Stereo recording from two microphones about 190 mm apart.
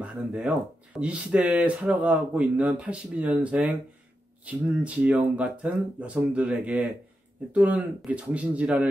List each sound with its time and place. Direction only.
0.0 s speech: 5° right (ahead or behind)